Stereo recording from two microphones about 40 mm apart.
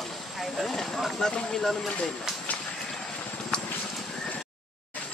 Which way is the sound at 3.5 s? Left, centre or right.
Left.